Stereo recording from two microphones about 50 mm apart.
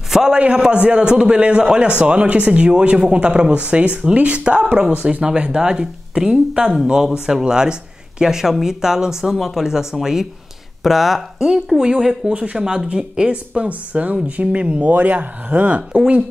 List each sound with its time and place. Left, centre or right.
0.1 s a man's voice: centre
11.3 s a man's voice: centre; by 15.8 s right